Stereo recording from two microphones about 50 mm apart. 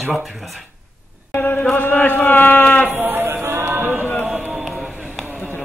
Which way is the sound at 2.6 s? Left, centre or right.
Left.